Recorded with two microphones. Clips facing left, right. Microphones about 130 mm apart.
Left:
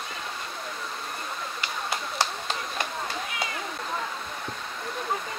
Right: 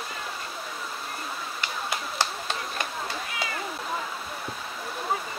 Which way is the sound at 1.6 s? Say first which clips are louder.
Even; centre (ahead or behind).